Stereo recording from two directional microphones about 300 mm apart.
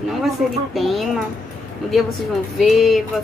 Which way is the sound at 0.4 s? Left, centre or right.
Centre.